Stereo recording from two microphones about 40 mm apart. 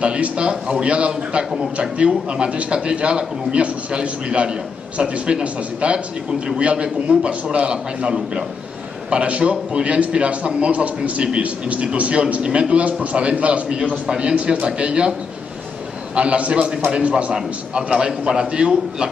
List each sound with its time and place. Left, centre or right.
0.0 s a sound: right
0.8 s a man's voice: right
14.0 s a man's voice: centre
14.3 s a man's voice: right
16.2 s a man's voice: right